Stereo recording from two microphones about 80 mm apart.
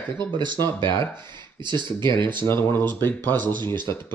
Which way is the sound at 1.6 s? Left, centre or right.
Right.